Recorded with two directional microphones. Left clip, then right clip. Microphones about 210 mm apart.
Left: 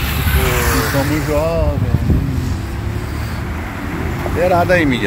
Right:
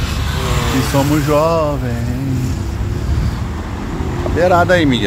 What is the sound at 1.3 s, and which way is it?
Speech, 30° right (ahead or behind).